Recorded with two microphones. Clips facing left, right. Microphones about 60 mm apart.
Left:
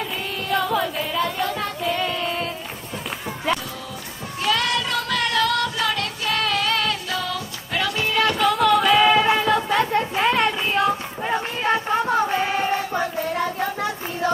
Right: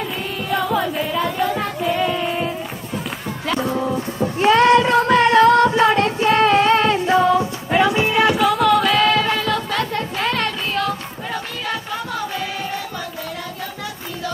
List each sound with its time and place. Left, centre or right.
0.5 s child singing: centre
3.5 s female singing: right
8.4 s music: centre
9.0 s a sound: centre; by 13.7 s left